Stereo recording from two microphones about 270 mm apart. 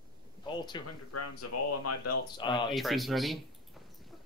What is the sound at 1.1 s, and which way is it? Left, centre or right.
Speech, left.